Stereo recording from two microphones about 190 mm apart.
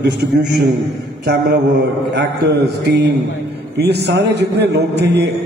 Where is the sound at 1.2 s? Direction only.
55° right (ahead or behind).